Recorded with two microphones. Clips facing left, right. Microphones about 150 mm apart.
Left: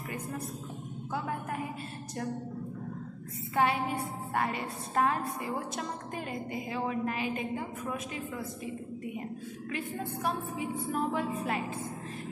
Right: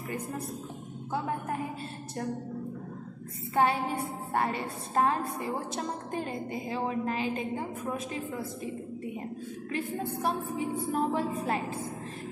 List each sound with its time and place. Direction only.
1.1 s a woman's voice: 30° right (ahead or behind)
3.5 s a woman's voice: 30° right (ahead or behind)
9.7 s a woman's voice: 30° right (ahead or behind)